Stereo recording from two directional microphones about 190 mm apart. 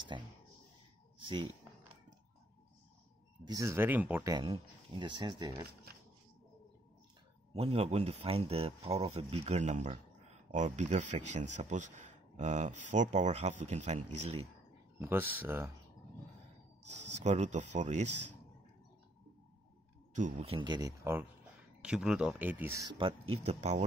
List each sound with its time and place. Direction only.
0.1 s speech: 25° right (ahead or behind)
3.4 s speech: 15° right (ahead or behind)
4.3 s speech: 25° right (ahead or behind)
7.5 s speech: 35° right (ahead or behind)
15.0 s speech: 10° right (ahead or behind)
17.2 s speech: 35° right (ahead or behind)
20.2 s speech: 40° right (ahead or behind)